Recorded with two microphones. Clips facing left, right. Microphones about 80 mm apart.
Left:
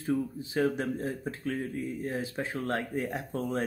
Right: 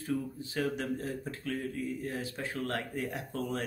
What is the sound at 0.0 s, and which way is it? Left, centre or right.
Speech, left.